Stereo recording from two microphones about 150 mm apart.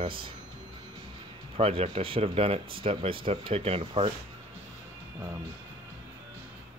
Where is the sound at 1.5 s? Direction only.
40° right (ahead or behind).